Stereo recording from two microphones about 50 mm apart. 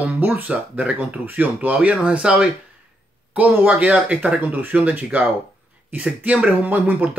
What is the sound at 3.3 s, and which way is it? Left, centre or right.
Speech, right.